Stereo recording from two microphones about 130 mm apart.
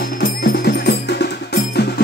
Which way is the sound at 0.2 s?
90° left.